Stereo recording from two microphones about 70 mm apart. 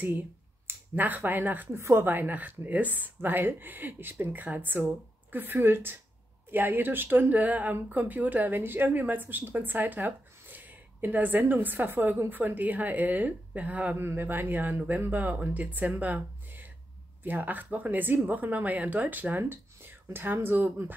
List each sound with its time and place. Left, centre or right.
0.7 s a woman's voice: right